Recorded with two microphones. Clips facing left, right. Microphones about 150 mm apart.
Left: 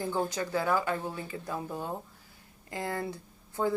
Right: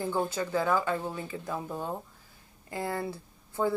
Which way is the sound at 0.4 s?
25° right (ahead or behind).